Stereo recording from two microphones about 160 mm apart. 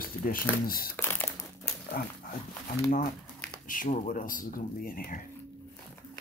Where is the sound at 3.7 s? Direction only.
55° left (ahead or behind).